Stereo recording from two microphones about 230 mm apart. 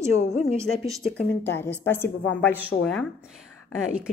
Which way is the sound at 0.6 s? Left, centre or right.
Centre.